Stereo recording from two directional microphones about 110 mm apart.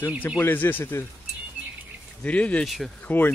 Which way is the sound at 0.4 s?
20° left (ahead or behind).